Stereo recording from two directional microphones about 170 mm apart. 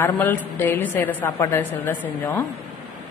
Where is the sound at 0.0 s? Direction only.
10° left (ahead or behind).